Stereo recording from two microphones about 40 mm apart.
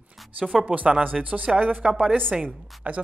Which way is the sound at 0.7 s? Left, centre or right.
Right.